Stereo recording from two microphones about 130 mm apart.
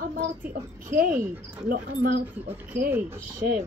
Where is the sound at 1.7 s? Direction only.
90° right.